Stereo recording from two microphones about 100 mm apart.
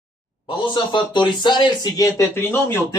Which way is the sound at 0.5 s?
50° left (ahead or behind).